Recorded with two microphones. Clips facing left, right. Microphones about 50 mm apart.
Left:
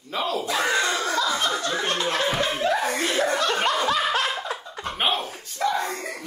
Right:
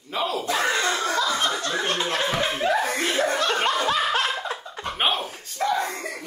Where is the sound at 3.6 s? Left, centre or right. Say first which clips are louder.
Even; right.